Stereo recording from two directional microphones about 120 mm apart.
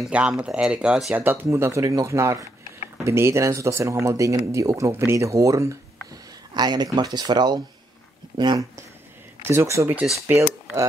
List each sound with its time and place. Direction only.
0.1 s speech: 10° right (ahead or behind)
1.2 s speech: 15° right (ahead or behind); by 8.6 s 40° right (ahead or behind)
9.5 s speech: 25° right (ahead or behind)